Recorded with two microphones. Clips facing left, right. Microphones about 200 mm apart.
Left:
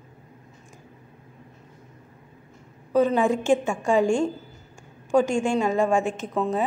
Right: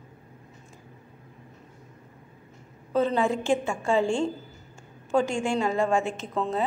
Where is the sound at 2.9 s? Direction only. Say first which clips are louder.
Left 4 dB; 15° left (ahead or behind).